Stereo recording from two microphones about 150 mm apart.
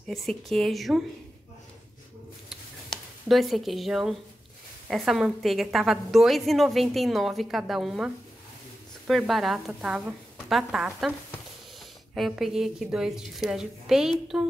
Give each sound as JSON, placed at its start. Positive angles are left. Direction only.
{"t": 0.0, "sound": "a woman's voice", "side_deg": 0}
{"t": 3.3, "sound": "a woman's voice", "side_deg": 0}